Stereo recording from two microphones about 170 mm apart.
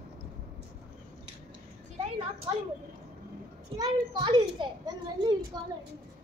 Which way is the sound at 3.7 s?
25° right (ahead or behind).